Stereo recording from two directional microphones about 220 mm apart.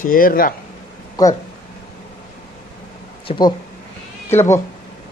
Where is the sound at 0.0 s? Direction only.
40° left (ahead or behind).